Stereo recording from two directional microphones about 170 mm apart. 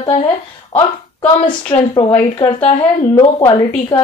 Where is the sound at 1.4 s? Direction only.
30° left (ahead or behind).